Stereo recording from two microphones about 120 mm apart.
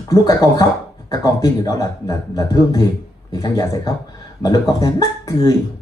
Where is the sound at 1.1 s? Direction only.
35° left (ahead or behind).